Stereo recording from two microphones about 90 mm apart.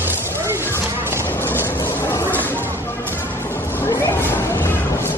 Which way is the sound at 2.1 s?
25° left (ahead or behind).